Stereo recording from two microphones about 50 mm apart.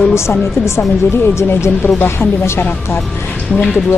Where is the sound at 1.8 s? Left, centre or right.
Left.